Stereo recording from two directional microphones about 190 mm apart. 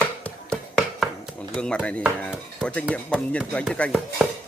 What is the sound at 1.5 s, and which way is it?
Speech, 5° left (ahead or behind).